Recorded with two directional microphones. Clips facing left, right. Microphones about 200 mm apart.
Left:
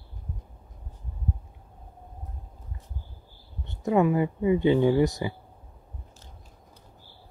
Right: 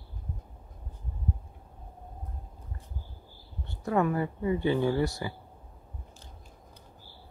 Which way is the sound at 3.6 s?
15° left (ahead or behind).